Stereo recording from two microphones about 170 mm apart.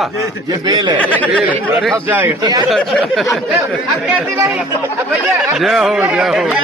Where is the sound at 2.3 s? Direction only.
25° right (ahead or behind).